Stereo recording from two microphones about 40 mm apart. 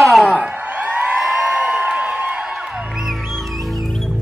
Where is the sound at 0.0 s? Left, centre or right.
Centre.